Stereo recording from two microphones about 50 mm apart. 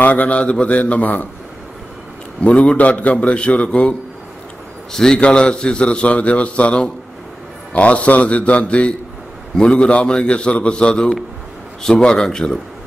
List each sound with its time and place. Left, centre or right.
0.0 s a man's voice: left
2.4 s a man's voice: left
4.9 s a man's voice: centre